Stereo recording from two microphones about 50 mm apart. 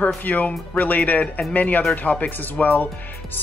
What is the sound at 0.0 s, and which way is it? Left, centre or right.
Speech, left.